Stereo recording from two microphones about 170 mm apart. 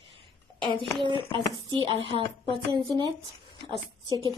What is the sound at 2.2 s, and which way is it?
Speech, 25° left (ahead or behind).